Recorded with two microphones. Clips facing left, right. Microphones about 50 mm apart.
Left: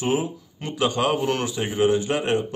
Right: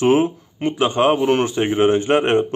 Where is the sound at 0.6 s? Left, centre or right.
Right.